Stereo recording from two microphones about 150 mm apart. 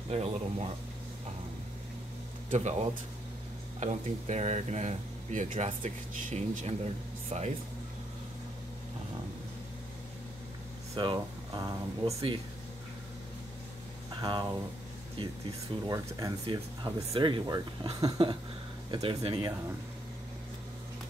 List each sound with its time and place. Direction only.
0.1 s speech: 45° right (ahead or behind)
2.5 s speech: 50° right (ahead or behind)
11.0 s speech: 25° right (ahead or behind)
14.2 s speech: 30° right (ahead or behind)
15.9 s speech: 25° right (ahead or behind); by 19.4 s 40° right (ahead or behind)